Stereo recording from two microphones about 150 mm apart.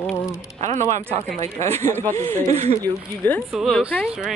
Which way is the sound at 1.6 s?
15° left (ahead or behind).